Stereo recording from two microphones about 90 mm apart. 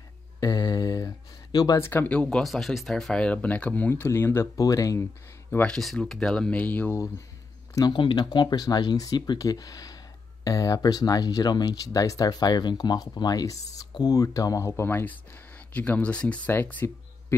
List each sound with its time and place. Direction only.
0.4 s a sound: 40° left (ahead or behind)
1.8 s speech: 25° left (ahead or behind)
2.2 s speech: centre (ahead or behind); by 4.5 s 30° left (ahead or behind)
4.6 s speech: 40° left (ahead or behind)
5.7 s speech: 5° left (ahead or behind)
7.9 s speech: 65° left (ahead or behind); by 17.4 s 25° left (ahead or behind)